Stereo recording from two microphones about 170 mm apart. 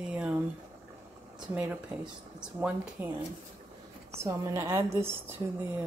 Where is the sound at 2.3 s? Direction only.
5° right (ahead or behind).